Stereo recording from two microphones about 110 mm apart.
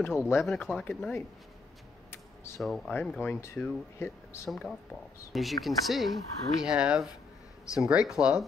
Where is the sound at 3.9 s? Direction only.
25° left (ahead or behind).